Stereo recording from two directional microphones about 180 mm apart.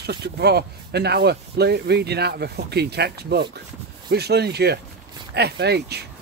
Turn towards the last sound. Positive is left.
turn(degrees=-65)  # may be behind; listen again after turning